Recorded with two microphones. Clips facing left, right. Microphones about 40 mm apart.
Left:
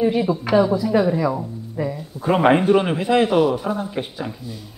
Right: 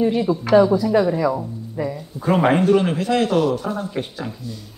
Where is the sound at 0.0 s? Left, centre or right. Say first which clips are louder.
Even; centre.